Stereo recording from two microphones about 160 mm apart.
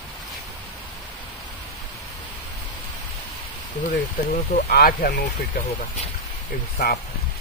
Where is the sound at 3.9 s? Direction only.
60° left (ahead or behind).